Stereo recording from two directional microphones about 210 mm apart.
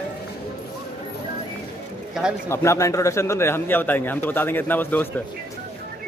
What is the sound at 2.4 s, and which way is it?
A man's voice, 10° left (ahead or behind).